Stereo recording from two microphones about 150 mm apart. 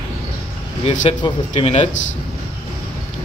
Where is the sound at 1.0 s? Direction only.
40° left (ahead or behind).